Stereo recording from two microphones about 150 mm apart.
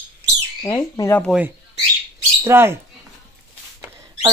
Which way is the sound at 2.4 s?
15° right (ahead or behind).